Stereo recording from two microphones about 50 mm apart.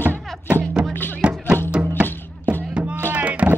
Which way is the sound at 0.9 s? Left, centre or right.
Left.